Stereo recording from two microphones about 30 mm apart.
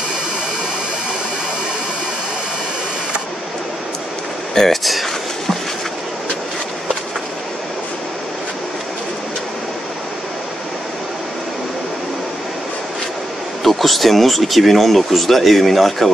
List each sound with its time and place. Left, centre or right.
4.6 s speech: centre
13.7 s speech: centre